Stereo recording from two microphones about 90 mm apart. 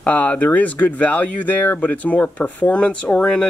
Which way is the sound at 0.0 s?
15° left (ahead or behind).